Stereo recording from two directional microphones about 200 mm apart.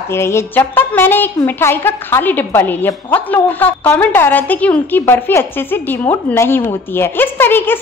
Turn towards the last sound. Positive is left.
turn(degrees=10)  # may be behind; listen again after turning